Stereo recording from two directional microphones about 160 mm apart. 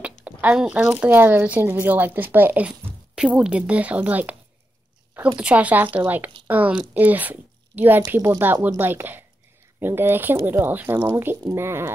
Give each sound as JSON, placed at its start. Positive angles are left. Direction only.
{"t": 0.0, "sound": "speech", "side_deg": -10}
{"t": 5.4, "sound": "speech", "side_deg": -10}